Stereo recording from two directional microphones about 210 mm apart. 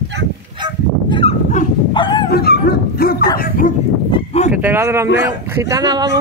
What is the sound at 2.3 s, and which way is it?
Dog, 50° left (ahead or behind).